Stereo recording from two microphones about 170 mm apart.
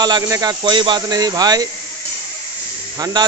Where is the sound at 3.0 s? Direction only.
25° right (ahead or behind).